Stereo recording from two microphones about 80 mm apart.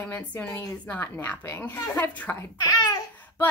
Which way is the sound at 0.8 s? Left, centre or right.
Left.